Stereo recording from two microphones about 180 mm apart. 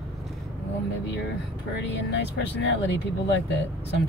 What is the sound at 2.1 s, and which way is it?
Speech, 75° left (ahead or behind).